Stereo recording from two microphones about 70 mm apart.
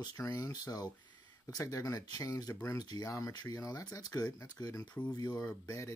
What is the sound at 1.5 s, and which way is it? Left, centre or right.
Speech, left.